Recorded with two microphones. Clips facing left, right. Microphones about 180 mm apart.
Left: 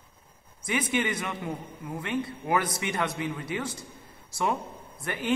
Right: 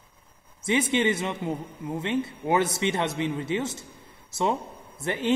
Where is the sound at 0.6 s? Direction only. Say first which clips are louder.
Right 4 dB; 25° right (ahead or behind).